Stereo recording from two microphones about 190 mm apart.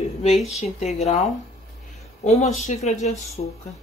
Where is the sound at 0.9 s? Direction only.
35° left (ahead or behind).